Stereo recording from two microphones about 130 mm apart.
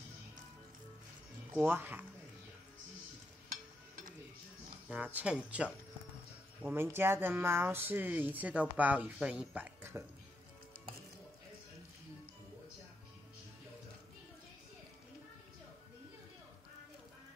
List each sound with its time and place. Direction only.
1.7 s speech: 15° right (ahead or behind)
4.8 s speech: 10° right (ahead or behind)